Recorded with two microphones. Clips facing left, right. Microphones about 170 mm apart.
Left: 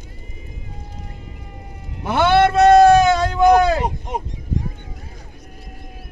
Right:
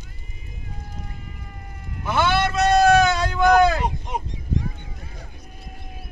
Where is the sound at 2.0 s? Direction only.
60° left (ahead or behind).